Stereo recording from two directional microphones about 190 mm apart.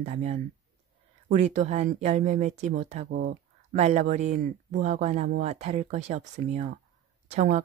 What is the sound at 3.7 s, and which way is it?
Speech, 35° right (ahead or behind).